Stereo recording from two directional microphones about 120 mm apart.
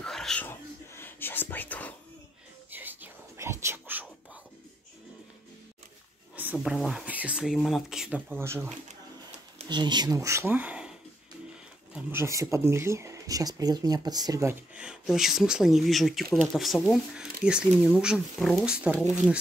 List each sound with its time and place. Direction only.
0.0 s whispering: 5° left (ahead or behind)
0.4 s whispering: 20° left (ahead or behind)
2.7 s whispering: 15° right (ahead or behind)
6.3 s a sound: 15° right (ahead or behind)
6.6 s speech: 5° right (ahead or behind)
8.4 s speech: 20° right (ahead or behind)
9.7 s speech: 40° right (ahead or behind); by 11.0 s 10° right (ahead or behind)
12.1 s speech: 25° right (ahead or behind)
14.8 s speech: 5° right (ahead or behind)